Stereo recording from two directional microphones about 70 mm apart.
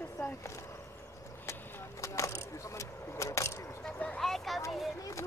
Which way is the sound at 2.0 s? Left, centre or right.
Left.